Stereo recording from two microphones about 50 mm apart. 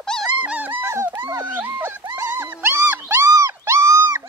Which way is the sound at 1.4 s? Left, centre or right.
Right.